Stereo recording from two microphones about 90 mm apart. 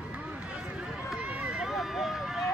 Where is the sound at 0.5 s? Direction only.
10° right (ahead or behind).